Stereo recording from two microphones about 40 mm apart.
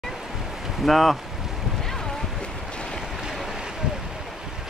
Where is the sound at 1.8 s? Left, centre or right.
Centre.